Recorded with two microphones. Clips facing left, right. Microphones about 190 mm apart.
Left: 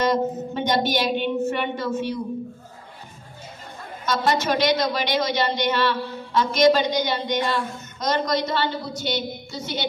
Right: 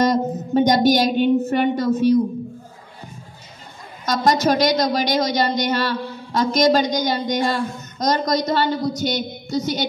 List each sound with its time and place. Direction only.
0.0 s a woman's voice: 40° right (ahead or behind)
4.0 s a woman's voice: 40° right (ahead or behind)